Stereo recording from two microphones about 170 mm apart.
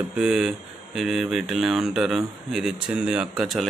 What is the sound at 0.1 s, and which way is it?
Speech, 5° right (ahead or behind).